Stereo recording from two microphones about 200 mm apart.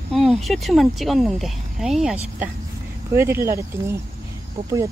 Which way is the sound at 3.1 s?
15° right (ahead or behind).